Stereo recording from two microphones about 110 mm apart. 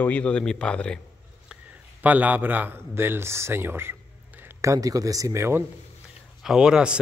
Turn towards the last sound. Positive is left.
turn(degrees=-5)  # may be behind; listen again after turning